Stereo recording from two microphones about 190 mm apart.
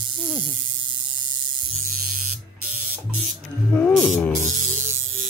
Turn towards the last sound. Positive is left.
turn(degrees=0)  # may be behind; listen again after turning